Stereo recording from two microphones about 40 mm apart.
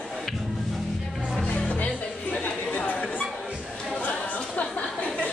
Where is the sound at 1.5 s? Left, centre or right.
Left.